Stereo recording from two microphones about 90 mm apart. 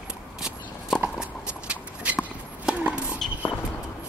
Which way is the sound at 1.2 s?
10° right (ahead or behind).